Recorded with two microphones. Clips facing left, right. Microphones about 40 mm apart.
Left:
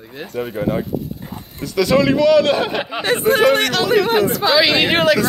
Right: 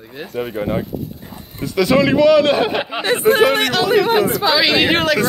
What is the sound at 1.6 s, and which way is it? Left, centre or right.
A man's voice, right.